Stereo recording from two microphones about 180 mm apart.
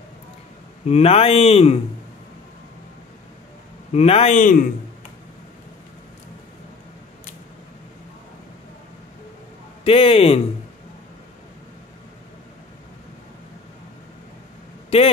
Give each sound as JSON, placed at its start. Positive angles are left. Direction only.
{"t": 0.8, "sound": "speech", "side_deg": 35}
{"t": 3.9, "sound": "speech", "side_deg": 35}
{"t": 9.8, "sound": "speech", "side_deg": 30}
{"t": 14.9, "sound": "a man's voice", "side_deg": 30}